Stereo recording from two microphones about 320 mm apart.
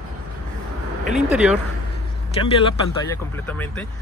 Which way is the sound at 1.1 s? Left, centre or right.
Centre.